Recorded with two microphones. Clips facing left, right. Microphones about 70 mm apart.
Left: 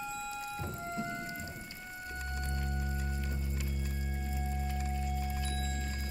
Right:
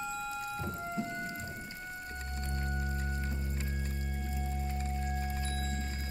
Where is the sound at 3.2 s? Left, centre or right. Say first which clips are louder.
Right 1 dB; right.